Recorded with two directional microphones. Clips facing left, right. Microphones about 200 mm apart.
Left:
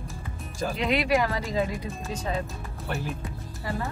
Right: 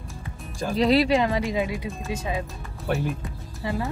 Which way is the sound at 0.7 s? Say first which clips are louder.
Right 8 dB; 35° right (ahead or behind).